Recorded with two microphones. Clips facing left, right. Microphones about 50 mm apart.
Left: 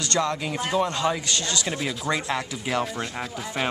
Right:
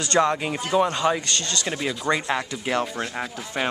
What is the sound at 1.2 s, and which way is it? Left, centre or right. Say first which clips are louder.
A woman's voice: even; centre.